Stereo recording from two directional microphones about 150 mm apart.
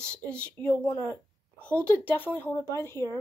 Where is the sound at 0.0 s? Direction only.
5° left (ahead or behind).